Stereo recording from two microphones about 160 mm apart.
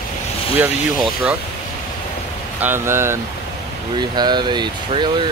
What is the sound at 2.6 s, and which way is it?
Speech, 15° right (ahead or behind).